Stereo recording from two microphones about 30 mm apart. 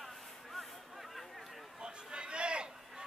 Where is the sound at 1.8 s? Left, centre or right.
Right.